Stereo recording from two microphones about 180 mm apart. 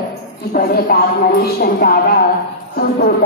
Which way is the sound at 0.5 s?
55° left (ahead or behind).